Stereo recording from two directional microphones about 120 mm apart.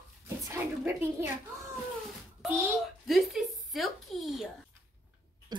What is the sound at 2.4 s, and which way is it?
Speech, 20° right (ahead or behind).